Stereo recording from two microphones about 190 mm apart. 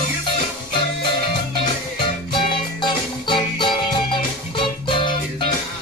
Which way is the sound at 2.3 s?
25° left (ahead or behind).